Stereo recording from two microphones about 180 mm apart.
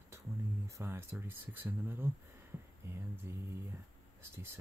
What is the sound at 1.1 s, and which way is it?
Speech, 10° right (ahead or behind).